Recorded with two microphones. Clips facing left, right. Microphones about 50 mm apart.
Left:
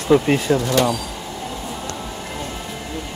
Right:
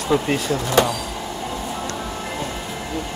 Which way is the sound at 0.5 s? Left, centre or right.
Right.